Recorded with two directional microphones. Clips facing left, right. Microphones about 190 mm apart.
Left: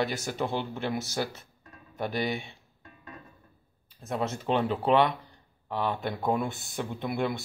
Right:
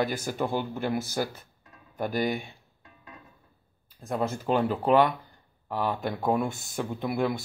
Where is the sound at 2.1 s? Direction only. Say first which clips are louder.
Right 3 dB; 45° right (ahead or behind).